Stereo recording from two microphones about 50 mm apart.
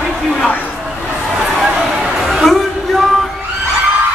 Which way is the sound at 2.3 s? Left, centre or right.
Centre.